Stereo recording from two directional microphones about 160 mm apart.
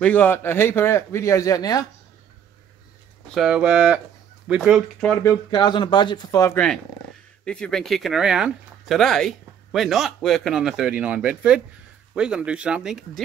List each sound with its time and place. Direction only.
0.0 s speech: 10° left (ahead or behind)
3.3 s speech: 5° right (ahead or behind)
5.1 s speech: 20° left (ahead or behind)
6.5 s speech: 5° left (ahead or behind)